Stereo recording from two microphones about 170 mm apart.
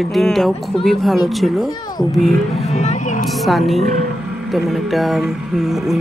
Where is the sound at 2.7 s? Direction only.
45° left (ahead or behind).